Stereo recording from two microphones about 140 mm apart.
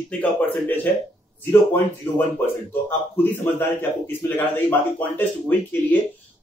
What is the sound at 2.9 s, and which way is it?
A man's voice, 15° left (ahead or behind).